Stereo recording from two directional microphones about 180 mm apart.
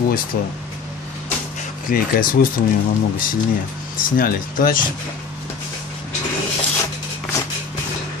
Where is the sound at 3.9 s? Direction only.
50° left (ahead or behind).